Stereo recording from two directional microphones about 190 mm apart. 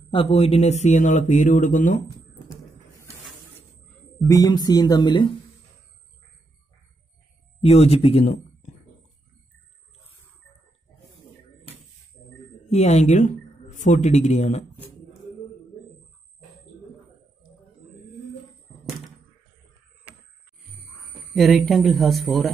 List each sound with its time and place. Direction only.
0.1 s speech: 30° left (ahead or behind)
4.2 s speech: 20° left (ahead or behind)
7.6 s speech: 35° left (ahead or behind)
12.6 s speech: 35° left (ahead or behind)
21.4 s speech: centre (ahead or behind)